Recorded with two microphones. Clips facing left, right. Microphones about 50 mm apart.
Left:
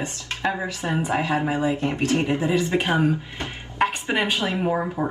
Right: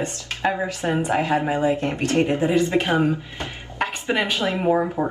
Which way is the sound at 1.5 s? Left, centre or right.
Right.